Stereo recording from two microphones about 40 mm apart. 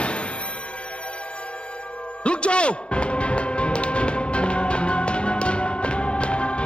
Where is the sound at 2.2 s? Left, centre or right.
Left.